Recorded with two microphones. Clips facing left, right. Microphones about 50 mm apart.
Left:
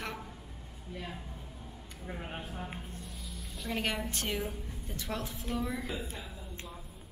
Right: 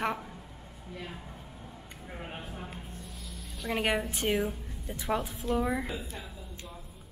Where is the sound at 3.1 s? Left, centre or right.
Centre.